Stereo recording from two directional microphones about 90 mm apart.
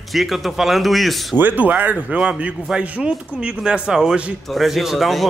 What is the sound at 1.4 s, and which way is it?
A man's voice, 20° right (ahead or behind).